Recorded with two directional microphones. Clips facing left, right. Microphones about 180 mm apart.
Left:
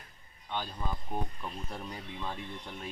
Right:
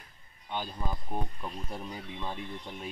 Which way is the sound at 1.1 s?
5° right (ahead or behind).